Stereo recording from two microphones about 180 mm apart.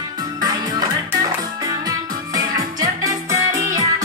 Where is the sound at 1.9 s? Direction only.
20° right (ahead or behind).